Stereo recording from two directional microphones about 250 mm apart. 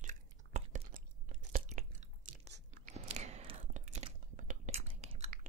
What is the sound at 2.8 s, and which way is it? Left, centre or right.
Whispering, right.